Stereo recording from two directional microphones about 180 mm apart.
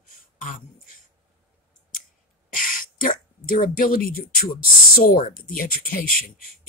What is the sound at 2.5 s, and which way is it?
Speech, 50° left (ahead or behind).